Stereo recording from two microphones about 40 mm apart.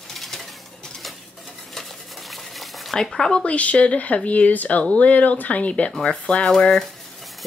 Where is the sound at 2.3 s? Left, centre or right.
Centre.